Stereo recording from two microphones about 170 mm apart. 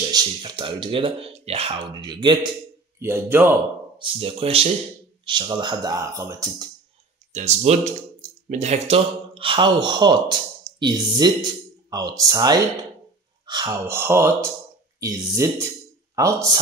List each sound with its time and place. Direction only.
0.1 s speech: 25° right (ahead or behind)
3.0 s speech: 15° right (ahead or behind)
4.0 s speech: 35° right (ahead or behind); by 6.7 s 20° right (ahead or behind)
7.3 s speech: 40° right (ahead or behind); by 16.5 s 20° right (ahead or behind)